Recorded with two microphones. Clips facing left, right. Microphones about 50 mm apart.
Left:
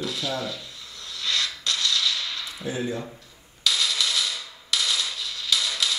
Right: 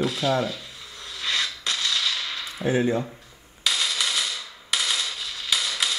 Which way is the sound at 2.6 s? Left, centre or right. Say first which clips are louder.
Right 7 dB; right.